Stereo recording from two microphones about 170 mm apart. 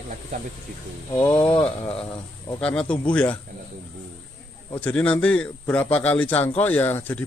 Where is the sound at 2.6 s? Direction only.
5° left (ahead or behind).